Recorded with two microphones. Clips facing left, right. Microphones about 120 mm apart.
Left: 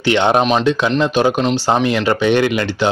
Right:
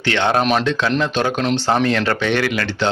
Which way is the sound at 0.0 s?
20° left (ahead or behind).